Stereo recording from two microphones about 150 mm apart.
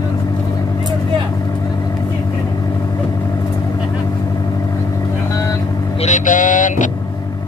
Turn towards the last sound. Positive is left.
turn(degrees=60)  # may be behind; listen again after turning